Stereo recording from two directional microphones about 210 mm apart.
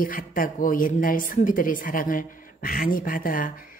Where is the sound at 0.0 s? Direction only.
40° left (ahead or behind).